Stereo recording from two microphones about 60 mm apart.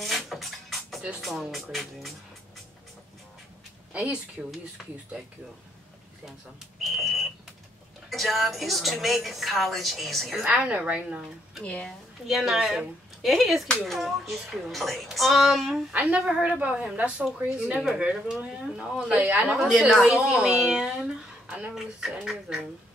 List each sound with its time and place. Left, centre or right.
0.0 s music: centre
1.2 s a woman's voice: centre
3.9 s a woman's voice: right
6.2 s a sound: centre
8.1 s a woman's voice: centre
10.4 s a woman's voice: right
11.6 s a woman's voice: left
12.3 s a woman's voice: centre
15.9 s a woman's voice: right
19.5 s a woman's voice: centre
20.2 s a woman's voice: centre